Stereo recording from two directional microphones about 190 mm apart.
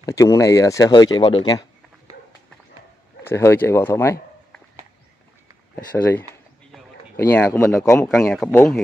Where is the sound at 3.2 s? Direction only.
10° left (ahead or behind).